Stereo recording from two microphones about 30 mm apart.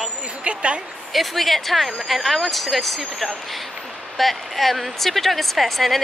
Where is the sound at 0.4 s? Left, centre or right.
Right.